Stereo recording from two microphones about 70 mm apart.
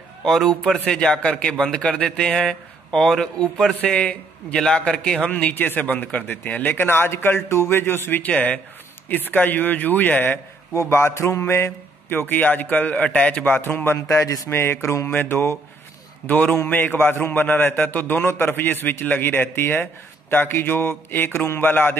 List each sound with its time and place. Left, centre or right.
0.2 s a man's voice: centre
5.5 s a man's voice: left
10.7 s a man's voice: left; by 13.6 s centre
13.6 s a man's voice: left
13.9 s speech: left
14.5 s mantra: left
16.3 s a man's voice: left